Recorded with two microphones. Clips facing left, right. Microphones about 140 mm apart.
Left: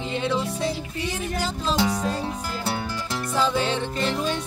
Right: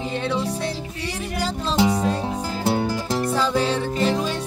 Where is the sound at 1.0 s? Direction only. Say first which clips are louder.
Right 1 dB; 35° right (ahead or behind).